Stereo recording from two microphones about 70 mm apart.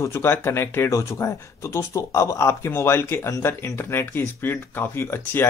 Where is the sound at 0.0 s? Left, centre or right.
Left.